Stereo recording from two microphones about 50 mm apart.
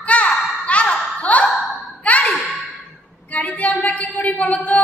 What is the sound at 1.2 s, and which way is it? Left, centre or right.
Sigh, left.